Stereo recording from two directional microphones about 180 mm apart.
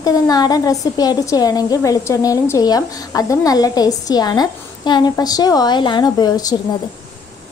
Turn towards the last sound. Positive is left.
turn(degrees=20)  # may be behind; listen again after turning